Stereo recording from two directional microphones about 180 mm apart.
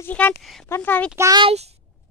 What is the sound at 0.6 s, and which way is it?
Speech, 10° left (ahead or behind).